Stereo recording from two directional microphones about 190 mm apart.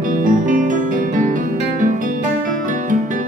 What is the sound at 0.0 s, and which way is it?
Music, 45° right (ahead or behind).